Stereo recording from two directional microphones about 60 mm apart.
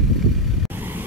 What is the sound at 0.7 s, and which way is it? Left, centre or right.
Vehicle, right.